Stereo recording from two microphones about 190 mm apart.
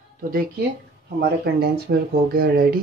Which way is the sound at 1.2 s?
55° right (ahead or behind).